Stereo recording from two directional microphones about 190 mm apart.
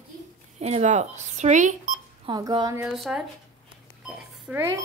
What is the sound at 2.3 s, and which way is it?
Speech, 20° right (ahead or behind).